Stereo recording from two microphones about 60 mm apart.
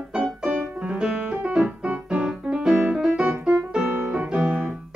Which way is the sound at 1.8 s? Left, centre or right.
Centre.